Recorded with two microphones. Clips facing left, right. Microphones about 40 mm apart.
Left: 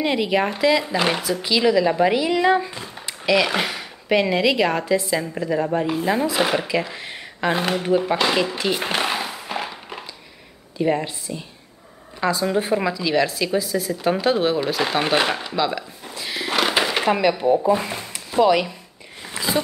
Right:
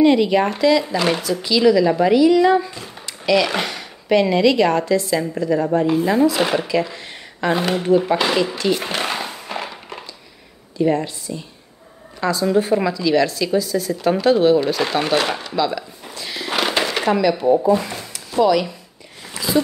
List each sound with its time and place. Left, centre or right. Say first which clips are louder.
0.0 s speech: right 6 dB; centre
3.3 s speech: right 1 dB; centre
6.7 s speech: right 3 dB; centre
8.0 s speech: right 2 dB; centre
8.5 s speech: right 2 dB; centre
9.0 s a sound: even; centre
10.8 s speech: right 3 dB; centre
16.0 s a sound: left 1 dB; centre
17.3 s speech: right 2 dB; centre
19.2 s a sound: right 3 dB; left